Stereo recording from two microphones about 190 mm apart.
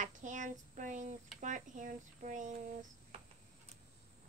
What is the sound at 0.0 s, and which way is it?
Child singing, 40° right (ahead or behind).